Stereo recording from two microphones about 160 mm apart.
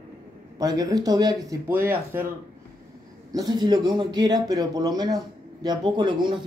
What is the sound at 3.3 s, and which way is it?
Speech, 25° right (ahead or behind).